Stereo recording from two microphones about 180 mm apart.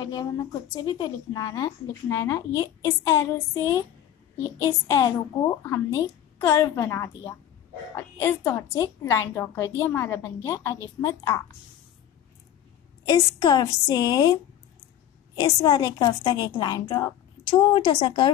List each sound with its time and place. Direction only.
0.0 s a woman's voice: 20° left (ahead or behind)
13.0 s a woman's voice: 25° left (ahead or behind)
15.3 s a woman's voice: 20° left (ahead or behind)